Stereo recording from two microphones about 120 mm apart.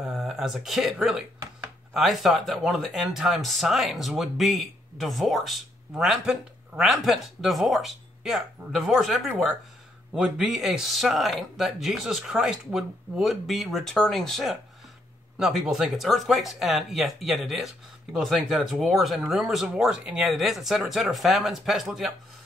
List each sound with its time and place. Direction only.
0.1 s speech: centre (ahead or behind)